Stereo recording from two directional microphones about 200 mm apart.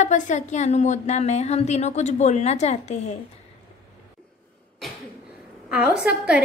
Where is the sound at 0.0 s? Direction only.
35° left (ahead or behind).